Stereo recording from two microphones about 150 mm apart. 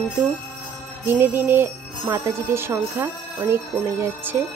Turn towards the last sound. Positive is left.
turn(degrees=-15)  # may be behind; listen again after turning